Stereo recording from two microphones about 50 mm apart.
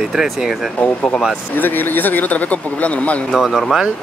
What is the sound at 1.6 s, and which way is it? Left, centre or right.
Speech, left.